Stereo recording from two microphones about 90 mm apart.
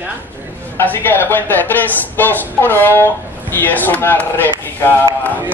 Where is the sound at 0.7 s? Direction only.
20° left (ahead or behind).